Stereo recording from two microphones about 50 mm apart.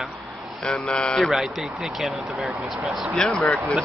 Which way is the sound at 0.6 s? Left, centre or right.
Centre.